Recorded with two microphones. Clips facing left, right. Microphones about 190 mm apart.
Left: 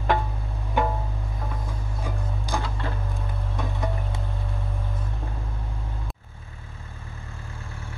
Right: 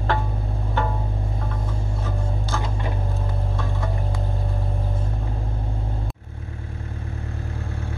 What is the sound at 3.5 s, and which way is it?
Music, 20° left (ahead or behind).